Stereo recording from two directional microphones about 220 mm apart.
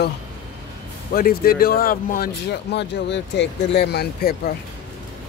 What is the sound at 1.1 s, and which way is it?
Speech, 40° left (ahead or behind).